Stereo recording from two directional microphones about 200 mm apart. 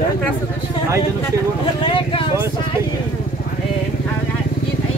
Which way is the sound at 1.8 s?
25° left (ahead or behind).